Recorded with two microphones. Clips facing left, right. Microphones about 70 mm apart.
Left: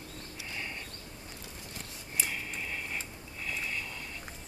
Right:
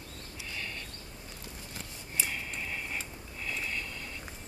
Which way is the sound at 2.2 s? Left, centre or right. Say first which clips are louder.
Even; centre.